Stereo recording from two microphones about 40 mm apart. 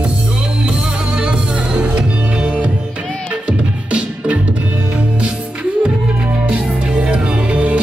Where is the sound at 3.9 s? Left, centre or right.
Right.